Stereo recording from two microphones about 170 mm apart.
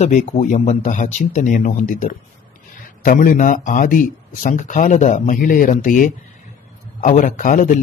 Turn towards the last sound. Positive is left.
turn(degrees=50)  # may be behind; listen again after turning